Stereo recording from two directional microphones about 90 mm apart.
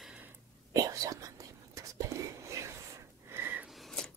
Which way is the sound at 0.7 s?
40° right (ahead or behind).